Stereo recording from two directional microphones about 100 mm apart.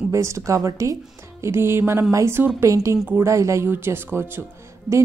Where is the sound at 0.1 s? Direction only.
30° right (ahead or behind).